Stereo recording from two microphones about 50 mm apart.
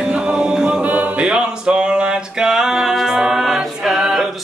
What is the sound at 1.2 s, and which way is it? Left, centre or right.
Music, centre.